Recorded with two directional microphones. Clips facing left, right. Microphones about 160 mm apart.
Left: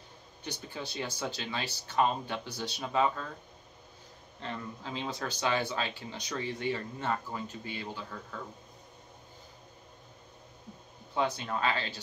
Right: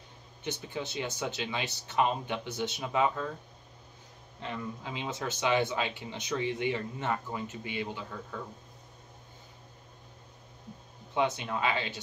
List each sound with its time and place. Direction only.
0.4 s speech: 20° right (ahead or behind)
4.4 s speech: 15° right (ahead or behind)
11.1 s speech: 20° right (ahead or behind)